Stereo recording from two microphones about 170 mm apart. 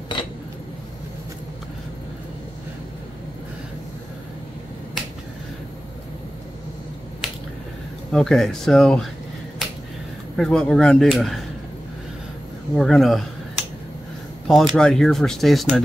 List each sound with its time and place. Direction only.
0.1 s cutlery: 25° left (ahead or behind)
8.1 s speech: 5° left (ahead or behind)
10.3 s speech: 5° left (ahead or behind)
12.7 s speech: centre (ahead or behind)